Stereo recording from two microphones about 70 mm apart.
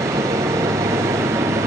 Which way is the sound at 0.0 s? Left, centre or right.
Right.